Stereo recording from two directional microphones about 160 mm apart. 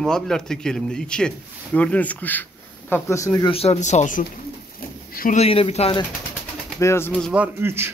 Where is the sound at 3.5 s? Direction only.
40° left (ahead or behind).